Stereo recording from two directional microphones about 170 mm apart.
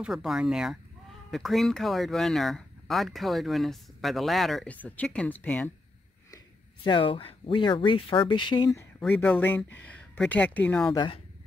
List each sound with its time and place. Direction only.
0.0 s speech: centre (ahead or behind)
6.3 s speech: 25° left (ahead or behind)
9.0 s speech: 10° left (ahead or behind)